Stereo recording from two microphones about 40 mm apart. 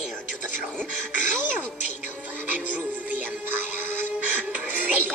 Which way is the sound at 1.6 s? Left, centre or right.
Left.